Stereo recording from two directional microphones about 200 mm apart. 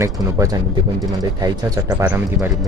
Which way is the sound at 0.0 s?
15° right (ahead or behind).